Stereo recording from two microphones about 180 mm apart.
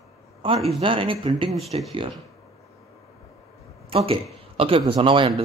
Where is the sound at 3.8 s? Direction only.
30° right (ahead or behind).